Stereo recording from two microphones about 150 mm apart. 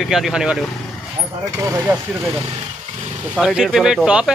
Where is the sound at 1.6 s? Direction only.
20° right (ahead or behind).